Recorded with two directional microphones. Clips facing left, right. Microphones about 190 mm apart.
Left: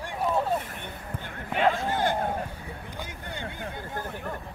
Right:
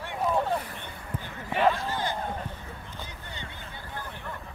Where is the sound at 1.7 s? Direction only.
50° left (ahead or behind).